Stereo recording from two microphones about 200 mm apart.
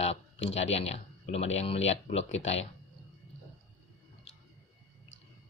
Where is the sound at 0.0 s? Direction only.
30° left (ahead or behind).